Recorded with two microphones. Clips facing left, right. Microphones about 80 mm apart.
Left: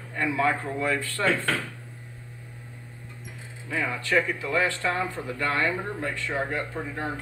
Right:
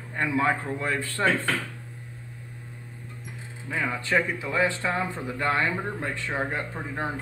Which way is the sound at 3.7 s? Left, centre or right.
Right.